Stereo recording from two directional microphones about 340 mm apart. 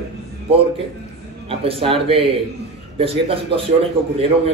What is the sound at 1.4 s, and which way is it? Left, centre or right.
A man's voice, centre.